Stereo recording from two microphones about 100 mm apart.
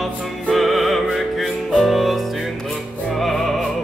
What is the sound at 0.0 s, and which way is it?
Music, centre (ahead or behind).